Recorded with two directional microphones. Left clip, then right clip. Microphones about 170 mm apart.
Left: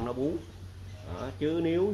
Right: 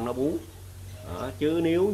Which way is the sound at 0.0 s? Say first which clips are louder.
Right 4 dB; 10° left (ahead or behind).